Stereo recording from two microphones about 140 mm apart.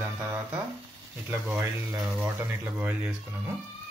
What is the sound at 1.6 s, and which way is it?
Speech, 25° right (ahead or behind).